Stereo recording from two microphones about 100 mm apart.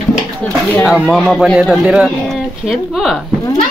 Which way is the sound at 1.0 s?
Centre (ahead or behind).